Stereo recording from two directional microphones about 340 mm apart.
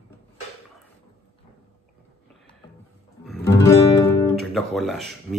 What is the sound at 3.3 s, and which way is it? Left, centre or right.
Guitar, centre.